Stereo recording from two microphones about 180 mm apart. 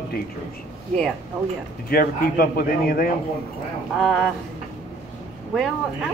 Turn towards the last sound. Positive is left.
turn(degrees=0)  # may be behind; listen again after turning